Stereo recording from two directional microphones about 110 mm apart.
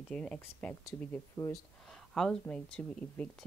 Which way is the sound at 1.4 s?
35° left (ahead or behind).